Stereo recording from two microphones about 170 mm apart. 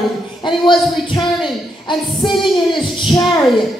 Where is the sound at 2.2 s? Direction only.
Centre (ahead or behind).